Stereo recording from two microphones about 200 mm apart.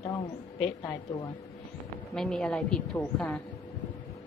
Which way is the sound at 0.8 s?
15° left (ahead or behind).